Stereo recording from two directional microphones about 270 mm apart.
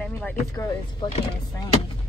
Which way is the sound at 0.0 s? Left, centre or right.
Centre.